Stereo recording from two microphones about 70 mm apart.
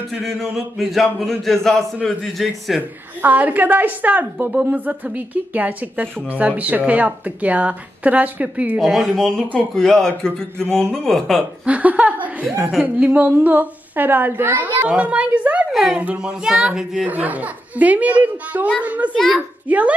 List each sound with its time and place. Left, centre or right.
0.1 s speech: centre
3.2 s a woman's voice: right
8.7 s speech: centre
11.6 s a woman's voice: right
14.9 s a woman's voice: centre
15.7 s a woman's voice: centre
17.0 s a woman's voice: right
19.1 s speech: centre
19.7 s a woman's voice: right